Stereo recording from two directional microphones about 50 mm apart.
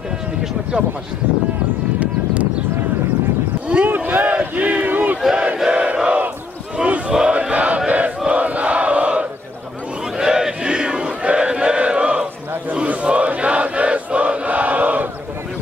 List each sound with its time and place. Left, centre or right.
3.6 s boat: right
3.9 s a sound: right
5.3 s battle cry: right
6.8 s chant: centre
8.3 s a sound: right
10.1 s chant: centre; by 15.0 s right